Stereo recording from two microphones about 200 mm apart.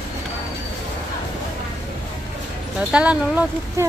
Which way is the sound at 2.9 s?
5° right (ahead or behind).